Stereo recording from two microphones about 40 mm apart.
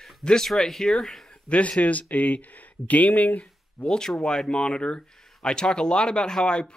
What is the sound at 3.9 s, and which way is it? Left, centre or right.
Speech, centre.